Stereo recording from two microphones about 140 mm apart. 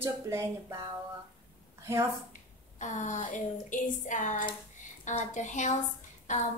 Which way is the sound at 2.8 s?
60° left (ahead or behind).